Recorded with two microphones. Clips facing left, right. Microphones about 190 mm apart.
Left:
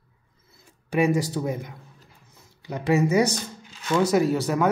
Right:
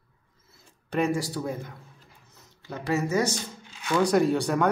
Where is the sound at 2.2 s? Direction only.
15° left (ahead or behind).